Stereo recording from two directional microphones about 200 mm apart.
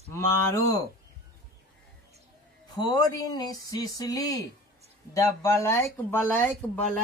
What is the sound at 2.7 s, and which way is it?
Speech, 20° left (ahead or behind).